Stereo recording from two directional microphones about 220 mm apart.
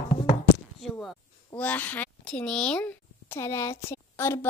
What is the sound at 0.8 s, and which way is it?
A child's voice, centre (ahead or behind).